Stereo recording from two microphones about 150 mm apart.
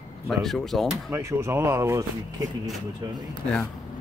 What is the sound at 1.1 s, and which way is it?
Speech, 15° right (ahead or behind).